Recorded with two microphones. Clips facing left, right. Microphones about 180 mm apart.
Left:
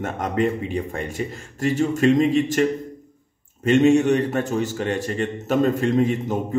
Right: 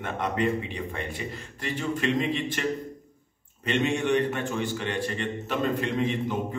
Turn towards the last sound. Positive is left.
turn(degrees=45)  # may be behind; listen again after turning